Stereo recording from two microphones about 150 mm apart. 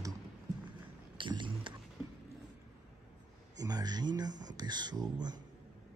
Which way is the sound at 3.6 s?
25° right (ahead or behind).